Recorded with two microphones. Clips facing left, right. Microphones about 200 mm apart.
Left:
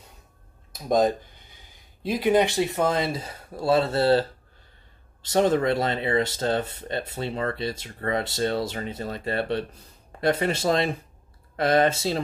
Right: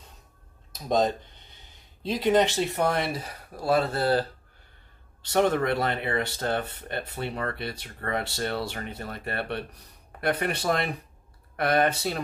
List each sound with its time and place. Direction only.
1.0 s a sound: 10° left (ahead or behind)
2.2 s speech: 10° left (ahead or behind); by 4.3 s 25° left (ahead or behind)
5.3 s speech: 20° left (ahead or behind)